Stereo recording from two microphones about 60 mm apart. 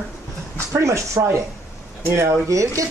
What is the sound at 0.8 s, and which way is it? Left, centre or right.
Speech, right.